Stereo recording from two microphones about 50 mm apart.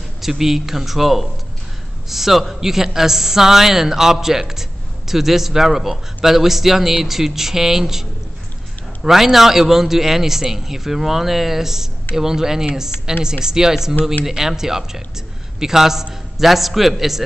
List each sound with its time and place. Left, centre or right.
0.2 s a man's voice: centre